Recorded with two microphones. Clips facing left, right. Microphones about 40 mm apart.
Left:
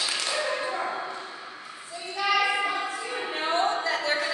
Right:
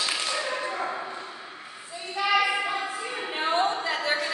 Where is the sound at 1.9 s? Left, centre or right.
Centre.